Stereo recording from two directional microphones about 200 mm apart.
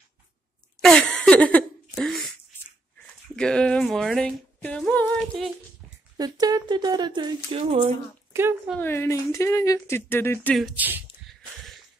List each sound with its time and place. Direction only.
0.7 s a sound: 5° left (ahead or behind)
3.3 s speech: 5° left (ahead or behind)
6.1 s speech: 20° right (ahead or behind)
8.3 s a sound: 10° right (ahead or behind)
8.7 s speech: 10° left (ahead or behind)
10.5 s speech: 5° right (ahead or behind)